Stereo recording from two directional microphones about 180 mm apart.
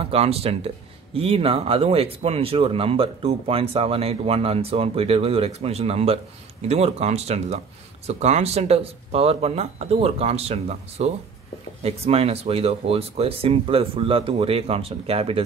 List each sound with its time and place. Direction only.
0.0 s speech: 35° right (ahead or behind)